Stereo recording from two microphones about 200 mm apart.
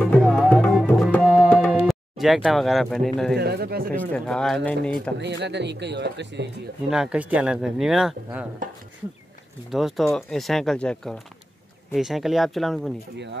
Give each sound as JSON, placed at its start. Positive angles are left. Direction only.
{"t": 0.0, "sound": "music", "side_deg": 0}
{"t": 3.3, "sound": "speech", "side_deg": -55}
{"t": 3.9, "sound": "speech", "side_deg": 5}
{"t": 5.1, "sound": "speech", "side_deg": -60}
{"t": 6.9, "sound": "speech", "side_deg": -5}
{"t": 9.7, "sound": "speech", "side_deg": 0}